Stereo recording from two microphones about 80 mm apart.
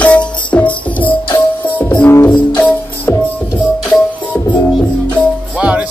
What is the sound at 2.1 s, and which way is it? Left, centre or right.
Music, left.